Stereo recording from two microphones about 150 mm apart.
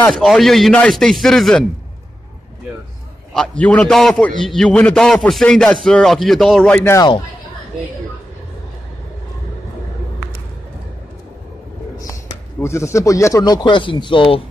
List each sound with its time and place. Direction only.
0.1 s speech: centre (ahead or behind)
3.3 s a man's voice: 10° left (ahead or behind)
12.0 s speech: 20° left (ahead or behind)